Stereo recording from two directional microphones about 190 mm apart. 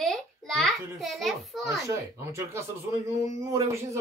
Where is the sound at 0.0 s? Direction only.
Centre (ahead or behind).